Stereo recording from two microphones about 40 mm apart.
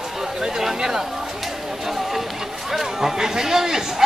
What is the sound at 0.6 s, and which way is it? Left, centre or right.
Speech, centre.